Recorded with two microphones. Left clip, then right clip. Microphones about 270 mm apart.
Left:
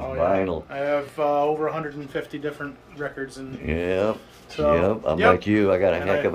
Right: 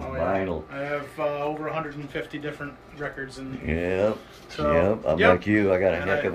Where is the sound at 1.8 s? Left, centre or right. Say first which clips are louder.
Left 1 dB; left.